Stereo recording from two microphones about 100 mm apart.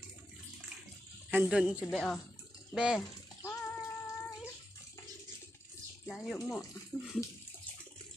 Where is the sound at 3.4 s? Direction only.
35° left (ahead or behind).